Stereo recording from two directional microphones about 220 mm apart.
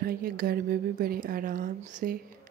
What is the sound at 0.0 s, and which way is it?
Speech, 45° right (ahead or behind).